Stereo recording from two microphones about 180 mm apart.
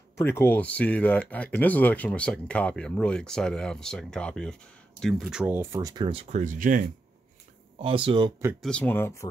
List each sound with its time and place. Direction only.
0.2 s speech: 10° left (ahead or behind); by 6.4 s 30° right (ahead or behind)
6.4 s speech: 45° right (ahead or behind)
7.8 s speech: 30° right (ahead or behind)
8.6 s speech: 10° left (ahead or behind)